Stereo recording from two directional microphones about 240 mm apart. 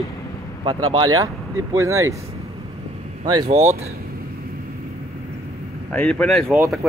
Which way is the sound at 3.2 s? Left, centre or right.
Right.